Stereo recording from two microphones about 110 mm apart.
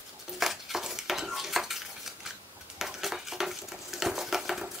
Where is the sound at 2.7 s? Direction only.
5° right (ahead or behind).